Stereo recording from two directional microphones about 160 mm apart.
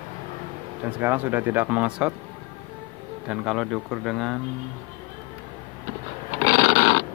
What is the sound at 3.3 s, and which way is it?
Speech, 5° right (ahead or behind).